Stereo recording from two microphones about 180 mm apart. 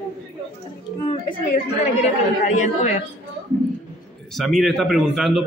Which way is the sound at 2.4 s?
40° left (ahead or behind).